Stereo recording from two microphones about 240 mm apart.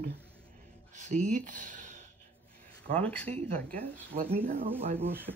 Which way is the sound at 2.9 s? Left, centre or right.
Centre.